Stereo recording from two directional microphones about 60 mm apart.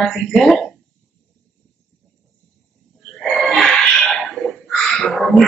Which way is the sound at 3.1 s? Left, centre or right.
Centre.